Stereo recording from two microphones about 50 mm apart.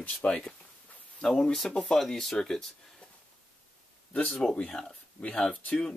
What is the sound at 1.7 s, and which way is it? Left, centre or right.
Speech, centre.